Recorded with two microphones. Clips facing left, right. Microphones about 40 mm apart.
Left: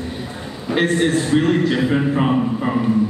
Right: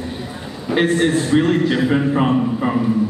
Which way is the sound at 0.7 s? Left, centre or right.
Centre.